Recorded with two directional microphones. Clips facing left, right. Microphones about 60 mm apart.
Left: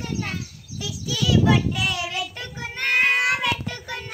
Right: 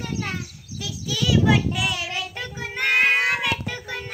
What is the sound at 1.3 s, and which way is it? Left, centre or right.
Child singing, centre.